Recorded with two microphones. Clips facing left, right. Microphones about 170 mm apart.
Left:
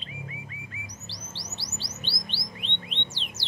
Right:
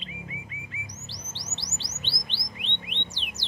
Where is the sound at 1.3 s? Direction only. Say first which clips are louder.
Left 1 dB; 20° right (ahead or behind).